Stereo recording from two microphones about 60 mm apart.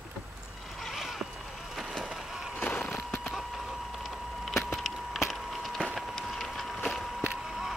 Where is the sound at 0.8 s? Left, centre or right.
Centre.